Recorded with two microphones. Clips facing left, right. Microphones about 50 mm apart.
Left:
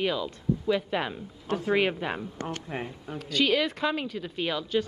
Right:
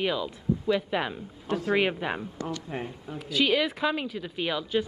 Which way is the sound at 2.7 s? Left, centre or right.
Centre.